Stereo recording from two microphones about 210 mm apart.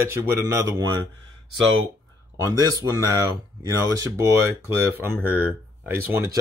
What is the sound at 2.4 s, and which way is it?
Speech, 15° right (ahead or behind).